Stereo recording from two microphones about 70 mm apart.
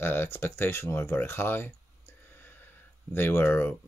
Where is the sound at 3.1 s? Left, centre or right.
Left.